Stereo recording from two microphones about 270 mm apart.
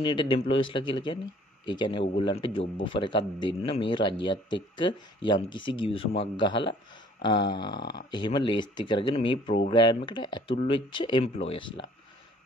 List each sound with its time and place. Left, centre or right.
0.0 s speech: centre